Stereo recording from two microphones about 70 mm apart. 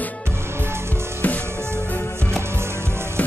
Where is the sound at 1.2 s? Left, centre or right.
Left.